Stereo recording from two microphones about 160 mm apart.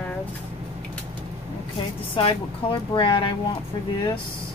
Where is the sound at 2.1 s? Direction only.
30° left (ahead or behind).